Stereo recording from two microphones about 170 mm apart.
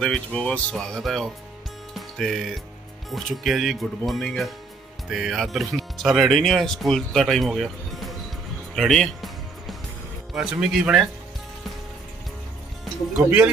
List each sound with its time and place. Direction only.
0.0 s speech: 5° left (ahead or behind)
2.0 s music: centre (ahead or behind)
3.1 s speech: centre (ahead or behind)
8.7 s music: centre (ahead or behind)
10.3 s speech: centre (ahead or behind)